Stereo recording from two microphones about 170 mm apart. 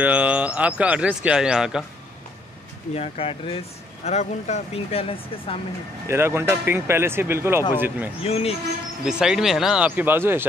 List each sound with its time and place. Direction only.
0.0 s speech: 10° right (ahead or behind)
2.9 s speech: 35° left (ahead or behind)
6.0 s speech: 15° right (ahead or behind)
8.2 s speech: 35° left (ahead or behind)
9.0 s speech: 5° right (ahead or behind)